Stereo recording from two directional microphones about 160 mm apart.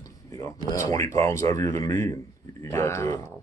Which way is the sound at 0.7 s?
20° left (ahead or behind).